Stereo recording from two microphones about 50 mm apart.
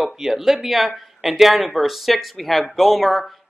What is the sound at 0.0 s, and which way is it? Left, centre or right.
Speech, centre.